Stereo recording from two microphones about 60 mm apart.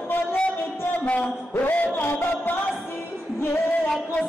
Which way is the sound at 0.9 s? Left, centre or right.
Left.